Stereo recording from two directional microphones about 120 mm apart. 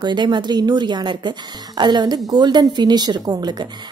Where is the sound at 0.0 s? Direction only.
40° right (ahead or behind).